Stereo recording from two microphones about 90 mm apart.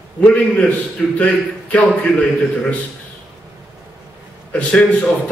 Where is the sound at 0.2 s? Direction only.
15° left (ahead or behind).